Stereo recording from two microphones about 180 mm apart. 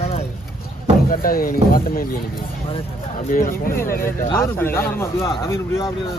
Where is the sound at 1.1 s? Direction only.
55° left (ahead or behind).